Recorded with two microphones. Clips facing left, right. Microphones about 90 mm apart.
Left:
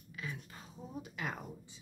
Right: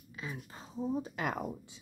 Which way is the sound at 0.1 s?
25° right (ahead or behind).